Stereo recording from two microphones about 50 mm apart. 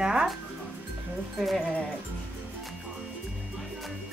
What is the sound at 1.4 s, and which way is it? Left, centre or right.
Speech, centre.